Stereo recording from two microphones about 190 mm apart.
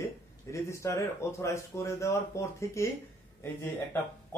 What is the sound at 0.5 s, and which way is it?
Speech, 15° left (ahead or behind).